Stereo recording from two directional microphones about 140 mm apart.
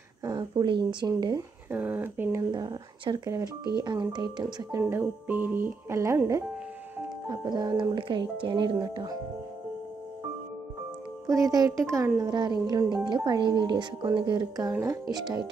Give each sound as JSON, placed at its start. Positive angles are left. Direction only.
{"t": 0.2, "sound": "speech", "side_deg": -30}
{"t": 1.7, "sound": "speech", "side_deg": -15}
{"t": 2.5, "sound": "speech", "side_deg": -35}
{"t": 4.8, "sound": "speech", "side_deg": -15}
{"t": 11.2, "sound": "speech", "side_deg": -25}
{"t": 14.7, "sound": "speech", "side_deg": -20}